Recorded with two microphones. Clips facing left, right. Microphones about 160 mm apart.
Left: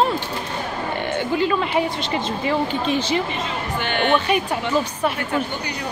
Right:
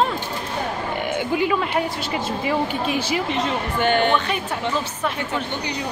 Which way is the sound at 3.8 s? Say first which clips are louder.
Right 4 dB; 45° right (ahead or behind).